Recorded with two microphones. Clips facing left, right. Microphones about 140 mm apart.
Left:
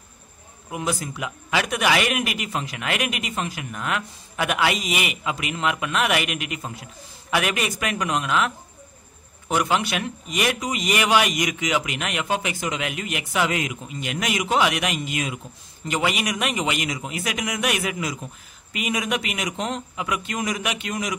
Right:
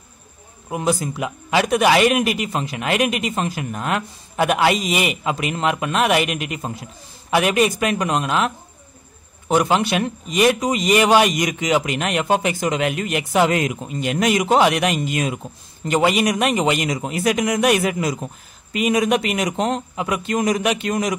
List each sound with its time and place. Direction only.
0.7 s a man's voice: 35° right (ahead or behind)